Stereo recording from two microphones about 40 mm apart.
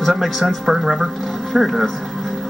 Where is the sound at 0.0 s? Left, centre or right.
Centre.